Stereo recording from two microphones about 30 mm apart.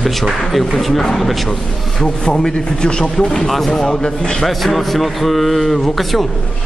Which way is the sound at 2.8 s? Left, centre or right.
Left.